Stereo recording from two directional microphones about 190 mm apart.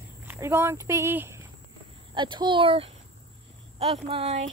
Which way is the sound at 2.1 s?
25° right (ahead or behind).